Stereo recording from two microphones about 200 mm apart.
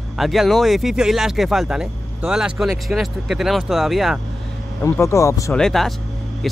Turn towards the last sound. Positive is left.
turn(degrees=0)  # may be behind; listen again after turning